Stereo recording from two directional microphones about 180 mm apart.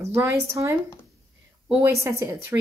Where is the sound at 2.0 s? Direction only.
15° right (ahead or behind).